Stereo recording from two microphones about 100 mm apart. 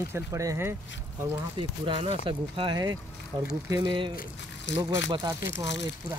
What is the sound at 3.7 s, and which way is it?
Speech, 45° right (ahead or behind).